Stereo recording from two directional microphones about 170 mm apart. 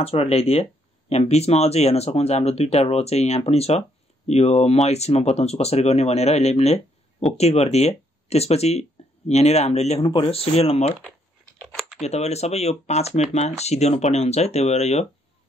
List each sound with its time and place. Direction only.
0.0 s speech: 35° left (ahead or behind)
12.0 s speech: 40° left (ahead or behind)